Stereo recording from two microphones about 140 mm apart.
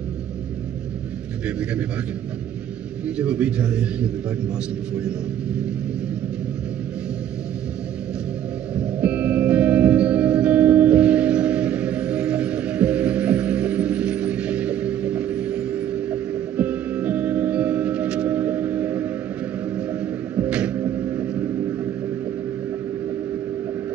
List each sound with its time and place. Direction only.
3.2 s a man's voice: 10° right (ahead or behind)
8.7 s music: 10° right (ahead or behind)
19.9 s a sound: 10° right (ahead or behind)